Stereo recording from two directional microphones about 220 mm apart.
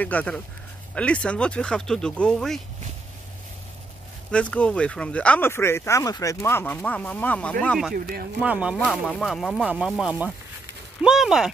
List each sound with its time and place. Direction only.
0.0 s speech: 5° left (ahead or behind)
4.3 s speech: 5° left (ahead or behind)
7.9 s speech: 40° right (ahead or behind)
8.4 s speech: 5° right (ahead or behind)